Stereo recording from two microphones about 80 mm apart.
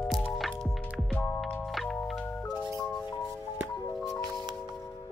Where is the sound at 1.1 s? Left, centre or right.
Centre.